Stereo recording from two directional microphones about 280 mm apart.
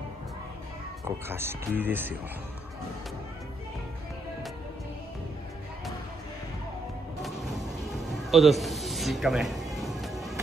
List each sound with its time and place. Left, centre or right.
1.0 s speech: centre
8.3 s music: centre